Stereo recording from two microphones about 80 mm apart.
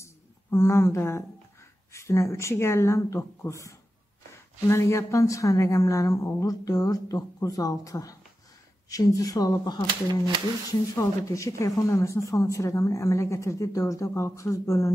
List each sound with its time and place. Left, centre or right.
0.0 s a sound: left
1.9 s a woman's voice: left
10.7 s a woman's voice: left